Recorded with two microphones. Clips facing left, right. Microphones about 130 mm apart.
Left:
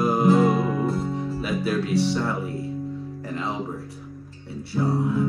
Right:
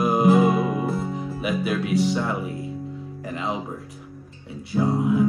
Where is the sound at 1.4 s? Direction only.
15° right (ahead or behind).